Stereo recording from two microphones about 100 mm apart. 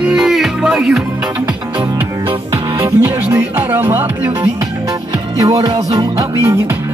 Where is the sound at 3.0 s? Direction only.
20° right (ahead or behind).